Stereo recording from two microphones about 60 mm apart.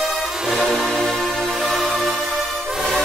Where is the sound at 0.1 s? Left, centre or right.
Centre.